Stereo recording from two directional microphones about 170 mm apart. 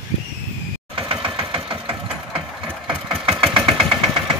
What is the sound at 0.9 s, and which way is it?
Engine, 30° right (ahead or behind).